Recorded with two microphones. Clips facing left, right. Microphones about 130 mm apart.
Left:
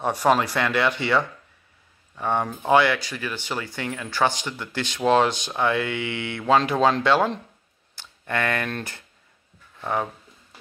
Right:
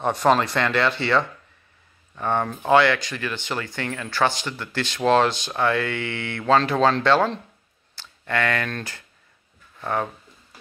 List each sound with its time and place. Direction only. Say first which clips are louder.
0.0 s speech: right 1 dB; 10° left (ahead or behind)